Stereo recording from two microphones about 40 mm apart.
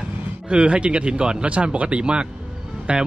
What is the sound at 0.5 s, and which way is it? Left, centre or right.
Speech, right.